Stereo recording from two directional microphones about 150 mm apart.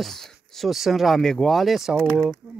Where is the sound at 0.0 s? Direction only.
Centre (ahead or behind).